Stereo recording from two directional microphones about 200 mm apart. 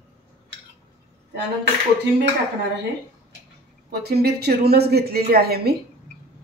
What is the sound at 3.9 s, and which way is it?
A woman's voice, 55° right (ahead or behind).